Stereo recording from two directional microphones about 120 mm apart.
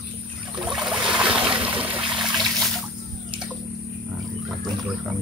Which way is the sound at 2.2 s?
Centre (ahead or behind).